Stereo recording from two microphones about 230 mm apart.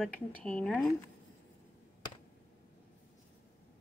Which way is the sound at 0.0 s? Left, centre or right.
Centre.